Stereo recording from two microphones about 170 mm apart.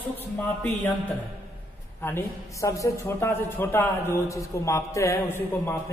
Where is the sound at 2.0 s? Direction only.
15° left (ahead or behind).